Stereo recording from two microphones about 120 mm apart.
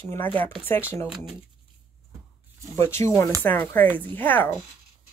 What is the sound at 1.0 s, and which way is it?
Speech, 5° right (ahead or behind).